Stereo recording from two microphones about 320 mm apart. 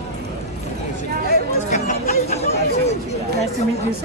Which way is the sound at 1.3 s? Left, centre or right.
Left.